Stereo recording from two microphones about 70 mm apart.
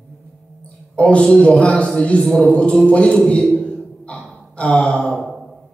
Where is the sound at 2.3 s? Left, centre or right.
Centre.